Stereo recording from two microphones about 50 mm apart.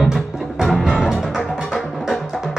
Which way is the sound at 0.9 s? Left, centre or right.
Centre.